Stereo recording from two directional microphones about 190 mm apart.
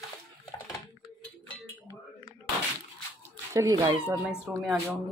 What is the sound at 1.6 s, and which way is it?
Chink, 15° left (ahead or behind).